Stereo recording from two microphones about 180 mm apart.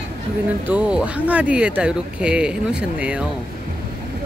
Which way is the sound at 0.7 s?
5° right (ahead or behind).